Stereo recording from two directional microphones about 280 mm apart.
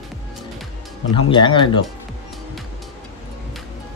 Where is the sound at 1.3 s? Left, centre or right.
Centre.